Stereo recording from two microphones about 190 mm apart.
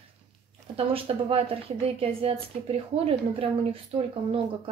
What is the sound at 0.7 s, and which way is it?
A woman's voice, 30° right (ahead or behind).